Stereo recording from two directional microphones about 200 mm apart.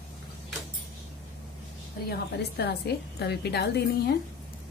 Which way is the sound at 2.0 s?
55° left (ahead or behind).